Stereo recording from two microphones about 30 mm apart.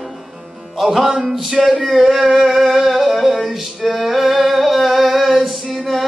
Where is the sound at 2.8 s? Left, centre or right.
Centre.